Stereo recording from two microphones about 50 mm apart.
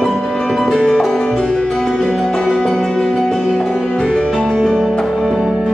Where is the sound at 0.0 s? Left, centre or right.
Centre.